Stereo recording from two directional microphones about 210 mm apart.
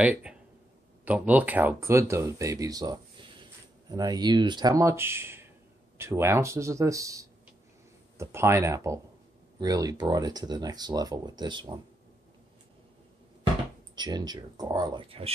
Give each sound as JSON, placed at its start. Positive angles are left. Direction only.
{"t": 0.0, "sound": "speech", "side_deg": -5}
{"t": 13.9, "sound": "speech", "side_deg": -20}